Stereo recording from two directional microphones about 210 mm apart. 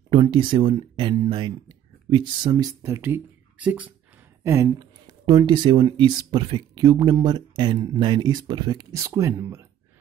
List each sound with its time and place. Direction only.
0.1 s speech: 20° right (ahead or behind)